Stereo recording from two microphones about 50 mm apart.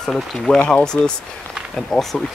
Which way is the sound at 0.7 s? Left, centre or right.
Centre.